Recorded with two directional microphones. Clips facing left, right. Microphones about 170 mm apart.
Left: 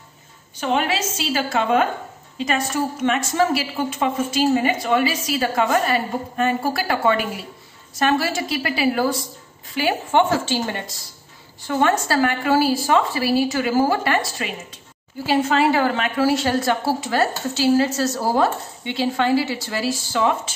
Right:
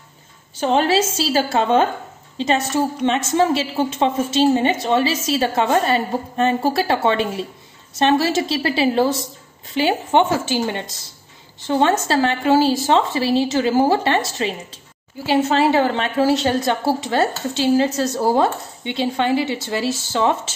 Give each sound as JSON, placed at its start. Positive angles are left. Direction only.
{"t": 0.6, "sound": "a woman's voice", "side_deg": -30}